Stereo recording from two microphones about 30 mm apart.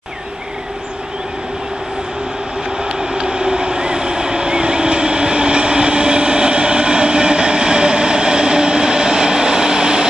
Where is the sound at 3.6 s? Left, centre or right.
Right.